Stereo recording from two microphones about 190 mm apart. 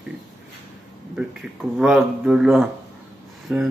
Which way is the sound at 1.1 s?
5° right (ahead or behind).